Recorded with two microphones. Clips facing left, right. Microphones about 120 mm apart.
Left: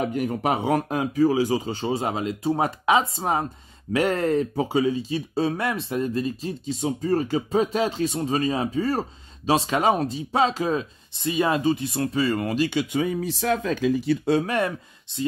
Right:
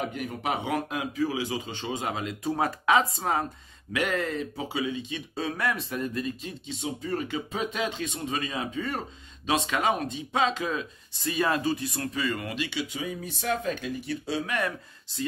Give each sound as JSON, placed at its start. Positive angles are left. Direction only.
{"t": 0.1, "sound": "speech", "side_deg": 40}
{"t": 3.9, "sound": "speech", "side_deg": 35}
{"t": 11.1, "sound": "speech", "side_deg": 20}
{"t": 14.4, "sound": "speech", "side_deg": 30}